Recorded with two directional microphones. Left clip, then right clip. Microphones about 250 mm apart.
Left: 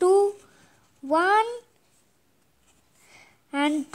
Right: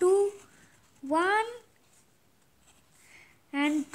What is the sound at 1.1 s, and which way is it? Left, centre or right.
Speech, left.